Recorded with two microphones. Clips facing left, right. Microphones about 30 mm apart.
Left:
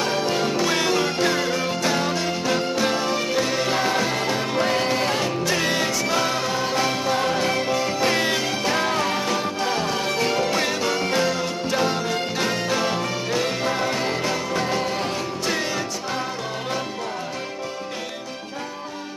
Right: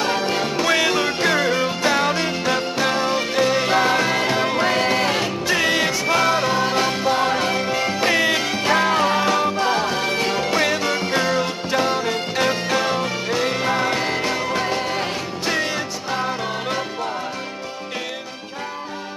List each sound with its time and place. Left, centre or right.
0.0 s music: centre